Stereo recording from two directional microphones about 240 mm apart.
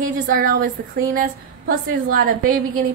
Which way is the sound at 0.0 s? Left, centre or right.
Right.